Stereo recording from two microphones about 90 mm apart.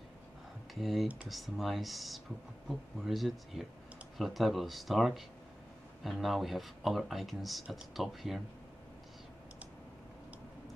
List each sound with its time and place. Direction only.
0.7 s speech: centre (ahead or behind)